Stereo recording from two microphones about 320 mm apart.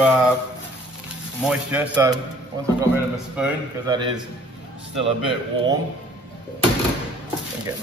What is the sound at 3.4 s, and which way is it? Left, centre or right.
Speech, centre.